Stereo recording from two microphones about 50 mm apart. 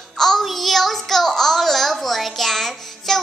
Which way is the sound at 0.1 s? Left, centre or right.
Centre.